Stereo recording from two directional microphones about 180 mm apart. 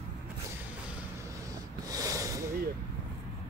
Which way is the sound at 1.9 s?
20° right (ahead or behind).